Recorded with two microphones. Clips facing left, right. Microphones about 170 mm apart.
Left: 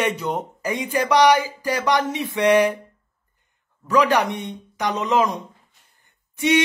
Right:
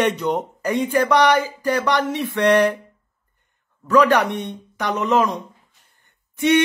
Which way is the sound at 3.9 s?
10° left (ahead or behind).